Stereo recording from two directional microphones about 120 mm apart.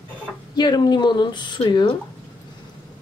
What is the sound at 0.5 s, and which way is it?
Speech, 35° left (ahead or behind).